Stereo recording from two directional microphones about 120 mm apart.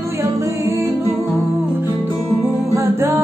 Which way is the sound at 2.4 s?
25° right (ahead or behind).